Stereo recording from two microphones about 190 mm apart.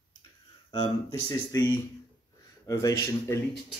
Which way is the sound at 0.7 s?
20° left (ahead or behind).